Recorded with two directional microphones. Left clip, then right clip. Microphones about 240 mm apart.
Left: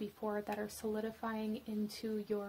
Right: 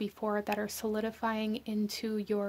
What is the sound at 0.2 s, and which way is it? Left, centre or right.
Speech, right.